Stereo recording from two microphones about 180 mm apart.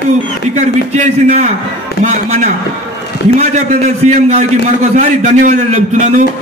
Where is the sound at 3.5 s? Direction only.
40° right (ahead or behind).